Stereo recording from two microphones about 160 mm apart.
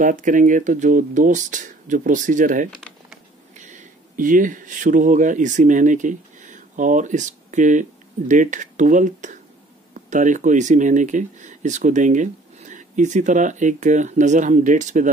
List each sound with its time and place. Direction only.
0.0 s speech: 55° right (ahead or behind)